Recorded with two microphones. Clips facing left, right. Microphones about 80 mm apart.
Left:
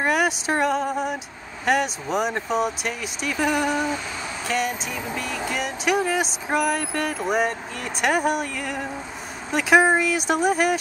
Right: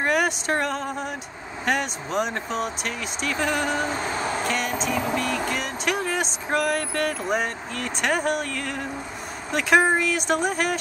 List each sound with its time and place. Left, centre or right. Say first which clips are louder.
0.0 s speech: left 1 dB; centre
3.7 s a sound: even; right
4.5 s speech: even; centre